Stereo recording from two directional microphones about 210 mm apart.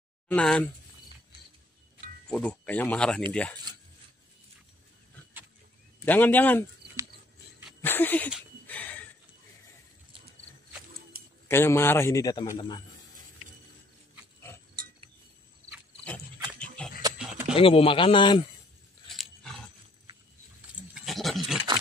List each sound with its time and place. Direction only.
0.3 s speech: 5° left (ahead or behind)
2.2 s speech: 5° left (ahead or behind)
6.0 s a man's voice: 10° left (ahead or behind)
7.8 s speech: 10° left (ahead or behind)
8.6 s a sound: 10° left (ahead or behind)
11.4 s a man's voice: 10° left (ahead or behind)
16.6 s dog: 5° left (ahead or behind)
17.2 s a sound: 5° right (ahead or behind)
17.6 s a man's voice: 25° left (ahead or behind)
19.0 s roaring cats: centre (ahead or behind)
20.9 s wild animals: centre (ahead or behind)